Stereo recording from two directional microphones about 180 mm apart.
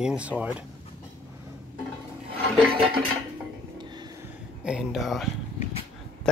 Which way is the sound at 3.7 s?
25° right (ahead or behind).